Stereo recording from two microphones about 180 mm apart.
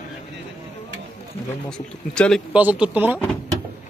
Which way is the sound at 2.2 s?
5° left (ahead or behind).